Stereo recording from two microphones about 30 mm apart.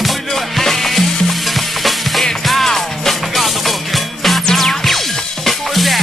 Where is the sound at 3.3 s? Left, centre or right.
Centre.